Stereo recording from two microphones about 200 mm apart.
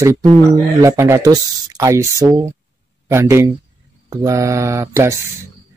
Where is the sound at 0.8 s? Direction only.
15° right (ahead or behind).